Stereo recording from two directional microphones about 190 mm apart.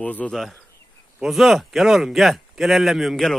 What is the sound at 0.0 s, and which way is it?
Speech, 10° left (ahead or behind).